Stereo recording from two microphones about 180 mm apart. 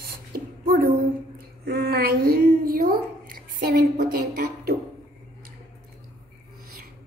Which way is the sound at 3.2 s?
55° right (ahead or behind).